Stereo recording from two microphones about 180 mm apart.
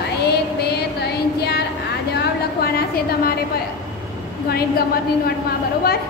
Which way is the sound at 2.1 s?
60° left (ahead or behind).